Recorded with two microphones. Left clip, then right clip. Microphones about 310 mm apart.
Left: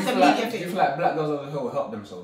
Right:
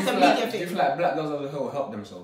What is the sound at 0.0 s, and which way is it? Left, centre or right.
Speech, centre.